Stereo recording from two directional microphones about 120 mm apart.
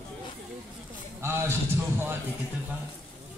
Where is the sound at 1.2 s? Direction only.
20° right (ahead or behind).